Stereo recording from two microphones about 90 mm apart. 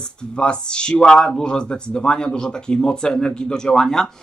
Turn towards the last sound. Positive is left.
turn(degrees=5)  # may be behind; listen again after turning